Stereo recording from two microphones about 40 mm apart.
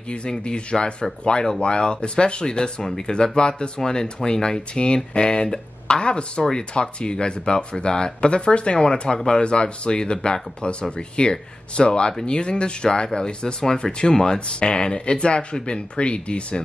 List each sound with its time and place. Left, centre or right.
0.1 s speech: left